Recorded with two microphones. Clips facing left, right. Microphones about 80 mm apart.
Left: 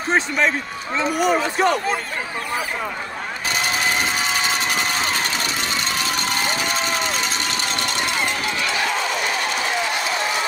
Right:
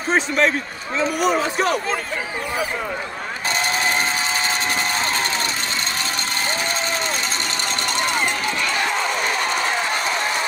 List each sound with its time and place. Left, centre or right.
0.1 s speech: centre
3.5 s crowd: right
6.4 s crowd: right
8.2 s run: right